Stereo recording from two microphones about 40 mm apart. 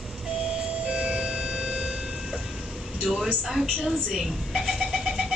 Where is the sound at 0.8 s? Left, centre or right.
Right.